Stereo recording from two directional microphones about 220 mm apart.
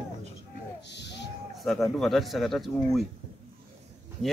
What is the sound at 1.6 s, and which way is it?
Speech, centre (ahead or behind).